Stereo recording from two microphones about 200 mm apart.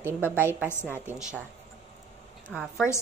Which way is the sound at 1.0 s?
10° right (ahead or behind).